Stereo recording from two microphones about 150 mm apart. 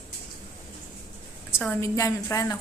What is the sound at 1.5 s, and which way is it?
Speech, 15° left (ahead or behind).